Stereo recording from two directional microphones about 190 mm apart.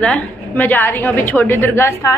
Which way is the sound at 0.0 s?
5° left (ahead or behind).